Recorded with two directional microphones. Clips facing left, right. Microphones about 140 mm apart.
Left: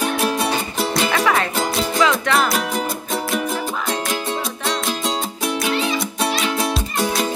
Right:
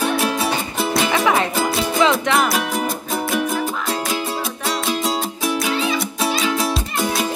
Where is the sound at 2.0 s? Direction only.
20° right (ahead or behind).